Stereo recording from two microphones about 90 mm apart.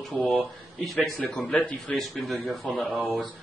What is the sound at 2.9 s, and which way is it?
Speech, 15° right (ahead or behind).